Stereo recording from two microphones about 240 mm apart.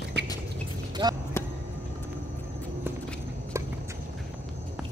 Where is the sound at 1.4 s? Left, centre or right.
Centre.